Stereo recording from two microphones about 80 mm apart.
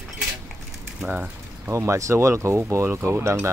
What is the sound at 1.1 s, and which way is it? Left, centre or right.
Mechanisms, right.